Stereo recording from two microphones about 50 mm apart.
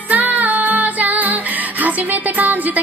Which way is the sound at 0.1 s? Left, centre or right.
Right.